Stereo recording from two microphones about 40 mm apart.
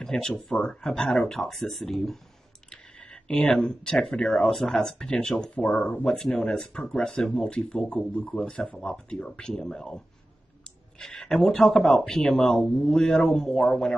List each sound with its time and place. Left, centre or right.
0.0 s speech: centre
2.7 s a sound: left
3.4 s speech: centre